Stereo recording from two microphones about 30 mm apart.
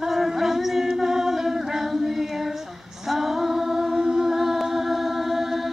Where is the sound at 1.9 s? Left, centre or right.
Centre.